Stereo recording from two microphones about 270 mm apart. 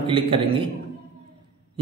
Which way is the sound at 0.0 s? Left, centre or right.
Centre.